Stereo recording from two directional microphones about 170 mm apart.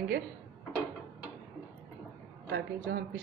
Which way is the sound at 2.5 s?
70° right (ahead or behind).